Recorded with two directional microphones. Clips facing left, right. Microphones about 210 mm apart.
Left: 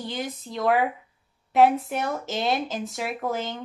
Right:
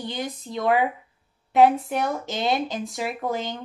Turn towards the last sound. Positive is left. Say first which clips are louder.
# right 1 dB
turn(degrees=0)  # may be behind; listen again after turning